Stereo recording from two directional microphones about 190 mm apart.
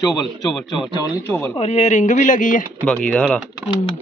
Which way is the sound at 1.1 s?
10° left (ahead or behind).